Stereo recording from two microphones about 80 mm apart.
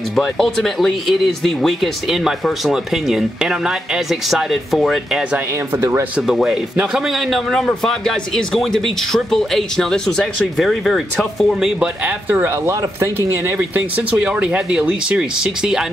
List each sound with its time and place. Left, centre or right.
0.1 s speech: centre
5.8 s speech: right
6.1 s speech: centre
11.8 s speech: right
12.6 s speech: right
13.6 s speech: right; by 15.8 s centre